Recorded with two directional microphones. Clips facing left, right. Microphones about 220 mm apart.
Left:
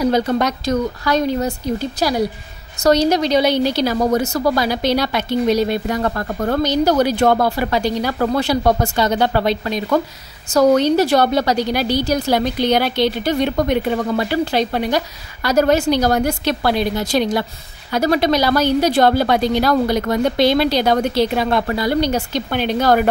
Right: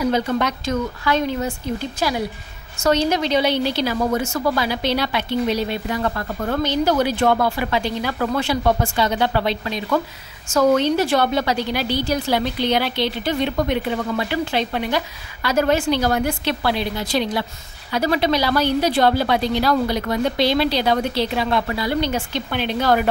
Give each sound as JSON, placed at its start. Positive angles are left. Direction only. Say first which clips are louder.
{"t": 0.0, "sound": "a woman's voice", "louder": "left 3 dB", "side_deg": 40}